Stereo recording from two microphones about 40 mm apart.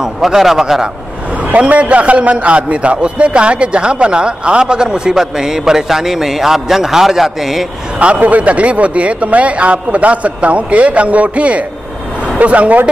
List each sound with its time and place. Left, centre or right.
0.0 s a man's voice: centre
1.6 s a man's voice: right; by 7.6 s centre
8.2 s speech: right